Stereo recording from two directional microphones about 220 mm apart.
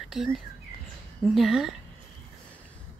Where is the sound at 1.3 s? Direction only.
Centre (ahead or behind).